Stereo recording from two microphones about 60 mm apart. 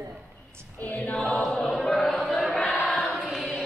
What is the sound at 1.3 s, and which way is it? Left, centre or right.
Choir, centre.